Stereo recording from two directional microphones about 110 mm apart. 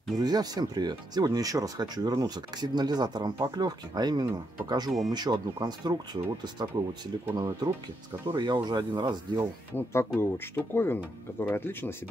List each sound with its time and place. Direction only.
0.1 s speech: 35° right (ahead or behind)
9.8 s speech: 20° left (ahead or behind)